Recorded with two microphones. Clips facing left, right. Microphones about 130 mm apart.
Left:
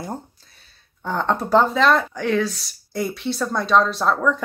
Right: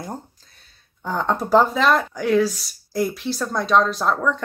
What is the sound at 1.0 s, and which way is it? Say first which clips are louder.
Speech: even; centre (ahead or behind).